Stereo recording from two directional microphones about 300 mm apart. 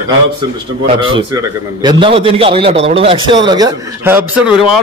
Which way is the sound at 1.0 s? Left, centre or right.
Centre.